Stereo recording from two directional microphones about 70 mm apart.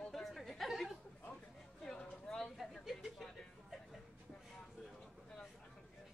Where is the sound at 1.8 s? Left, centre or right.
Centre.